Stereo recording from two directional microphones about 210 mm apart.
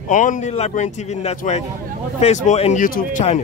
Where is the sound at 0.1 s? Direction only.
40° left (ahead or behind).